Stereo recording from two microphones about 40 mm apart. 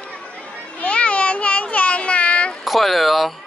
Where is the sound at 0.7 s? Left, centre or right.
Left.